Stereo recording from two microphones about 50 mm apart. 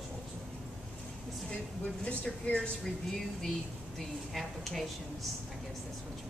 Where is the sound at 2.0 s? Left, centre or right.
Left.